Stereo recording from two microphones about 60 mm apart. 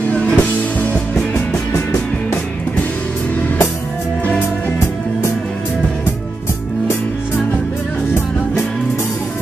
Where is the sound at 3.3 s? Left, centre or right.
Left.